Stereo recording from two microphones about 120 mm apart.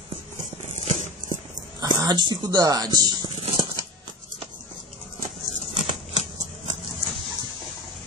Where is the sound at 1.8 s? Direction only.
35° right (ahead or behind).